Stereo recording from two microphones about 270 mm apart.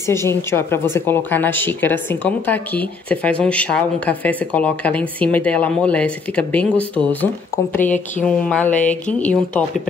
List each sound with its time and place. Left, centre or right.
0.0 s a woman's voice: centre